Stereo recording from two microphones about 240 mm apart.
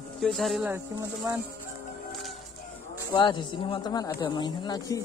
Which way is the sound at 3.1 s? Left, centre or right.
Centre.